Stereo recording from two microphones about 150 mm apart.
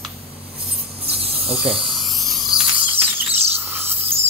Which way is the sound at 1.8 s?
Centre (ahead or behind).